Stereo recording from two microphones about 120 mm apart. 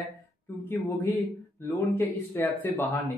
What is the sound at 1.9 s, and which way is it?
Speech, 15° left (ahead or behind).